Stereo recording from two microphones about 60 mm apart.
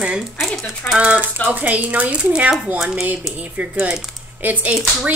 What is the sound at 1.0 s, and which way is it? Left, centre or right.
Speech, right.